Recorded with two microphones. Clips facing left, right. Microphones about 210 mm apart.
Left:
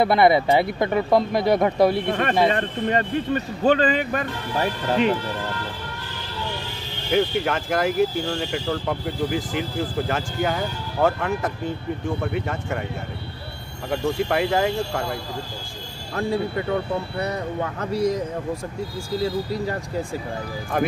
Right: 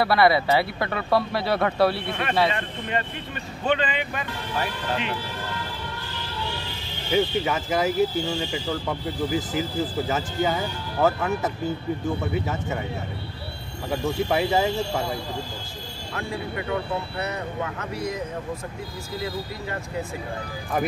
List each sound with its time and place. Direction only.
0.0 s speech: 20° left (ahead or behind)
2.0 s speech: 45° left (ahead or behind)
7.1 s speech: centre (ahead or behind)
14.3 s speech: 5° right (ahead or behind)
16.2 s speech: 35° left (ahead or behind)